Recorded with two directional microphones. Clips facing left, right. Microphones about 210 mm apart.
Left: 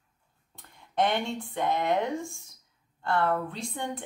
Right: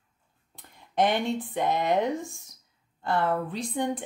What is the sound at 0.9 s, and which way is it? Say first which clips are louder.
Speech: right 3 dB; 20° right (ahead or behind).